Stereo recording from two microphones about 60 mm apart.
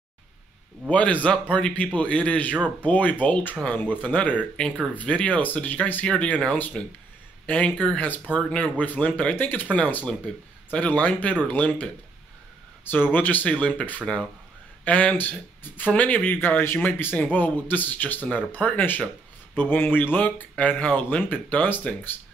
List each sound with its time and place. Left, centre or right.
0.8 s speech: left
8.4 s speech: centre
8.7 s speech: left
12.9 s speech: left
16.3 s speech: left